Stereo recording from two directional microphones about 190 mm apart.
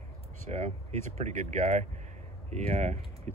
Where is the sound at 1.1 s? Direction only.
35° right (ahead or behind).